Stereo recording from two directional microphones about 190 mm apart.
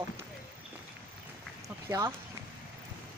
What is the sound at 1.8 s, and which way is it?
Speech, 20° right (ahead or behind).